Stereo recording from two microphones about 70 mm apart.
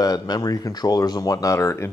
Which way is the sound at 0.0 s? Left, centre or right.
Left.